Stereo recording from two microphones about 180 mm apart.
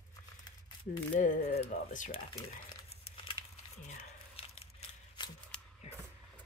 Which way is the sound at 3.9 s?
30° left (ahead or behind).